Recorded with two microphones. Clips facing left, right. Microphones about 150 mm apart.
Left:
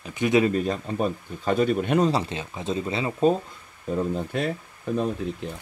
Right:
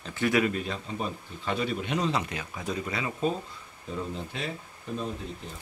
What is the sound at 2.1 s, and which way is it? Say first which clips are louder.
Speech: left 4 dB; 30° left (ahead or behind).